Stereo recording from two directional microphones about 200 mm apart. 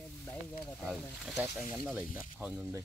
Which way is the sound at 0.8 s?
Centre (ahead or behind).